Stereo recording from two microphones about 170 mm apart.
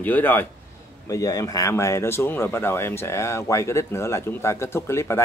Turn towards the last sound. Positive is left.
turn(degrees=15)  # may be behind; listen again after turning